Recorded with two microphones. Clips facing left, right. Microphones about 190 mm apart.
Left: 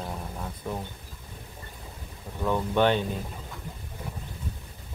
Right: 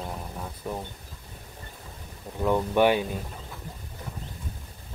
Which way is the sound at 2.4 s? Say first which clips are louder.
Right 2 dB; 15° right (ahead or behind).